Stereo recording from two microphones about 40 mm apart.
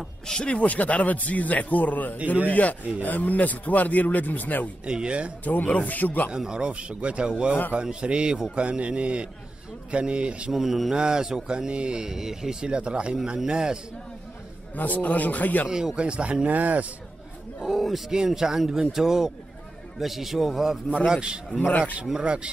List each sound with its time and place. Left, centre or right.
0.3 s speech: left
4.8 s speech: right
5.4 s speech: left
6.3 s speech: right
10.5 s speech: centre
14.8 s speech: left
15.7 s speech: centre
16.0 s speech: right
16.4 s speech: right
17.6 s a man's voice: centre
18.1 s speech: centre
21.1 s speech: right
21.5 s speech: left
22.1 s speech: right